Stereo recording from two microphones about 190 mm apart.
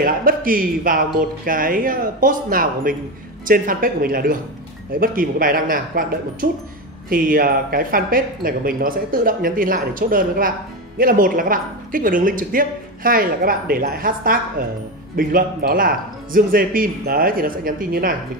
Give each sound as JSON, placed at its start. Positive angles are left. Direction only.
{"t": 0.0, "sound": "speech", "side_deg": -50}